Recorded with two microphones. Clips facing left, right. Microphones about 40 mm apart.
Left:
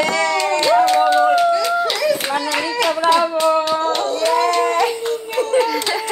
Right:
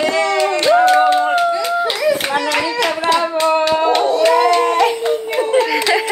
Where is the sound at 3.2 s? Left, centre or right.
Right.